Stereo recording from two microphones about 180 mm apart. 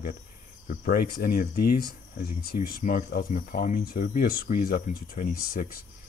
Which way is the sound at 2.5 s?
50° left (ahead or behind).